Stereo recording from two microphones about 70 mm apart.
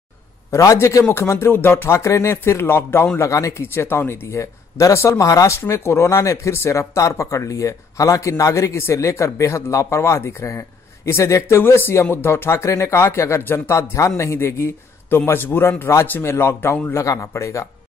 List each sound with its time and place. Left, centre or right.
0.5 s speech: left
3.2 s speech: left
3.6 s speech: left
5.6 s speech: left
16.9 s speech: left